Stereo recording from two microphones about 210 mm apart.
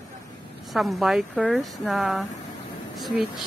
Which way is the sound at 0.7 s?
Centre (ahead or behind).